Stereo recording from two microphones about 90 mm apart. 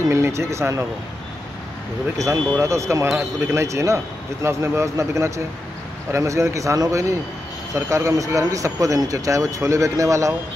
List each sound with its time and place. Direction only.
0.1 s speech: 30° right (ahead or behind)
2.1 s speech: 35° right (ahead or behind)